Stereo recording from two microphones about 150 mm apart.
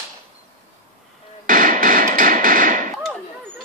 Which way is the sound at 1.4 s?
65° right (ahead or behind).